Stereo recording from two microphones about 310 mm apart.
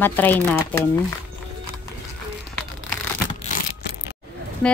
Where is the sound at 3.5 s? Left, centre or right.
Left.